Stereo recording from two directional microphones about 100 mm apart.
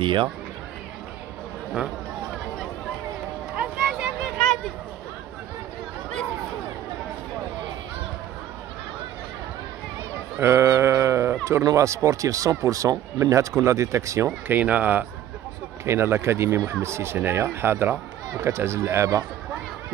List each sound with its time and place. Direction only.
0.0 s speech: 55° right (ahead or behind)
3.5 s a sound: 15° right (ahead or behind)
10.4 s sheep: 25° right (ahead or behind)
11.6 s speech: 30° right (ahead or behind)
14.5 s speech: 15° right (ahead or behind); by 19.2 s 30° right (ahead or behind)